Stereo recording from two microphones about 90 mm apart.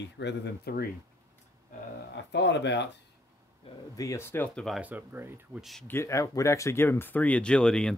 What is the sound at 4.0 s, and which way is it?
Speech, 30° left (ahead or behind).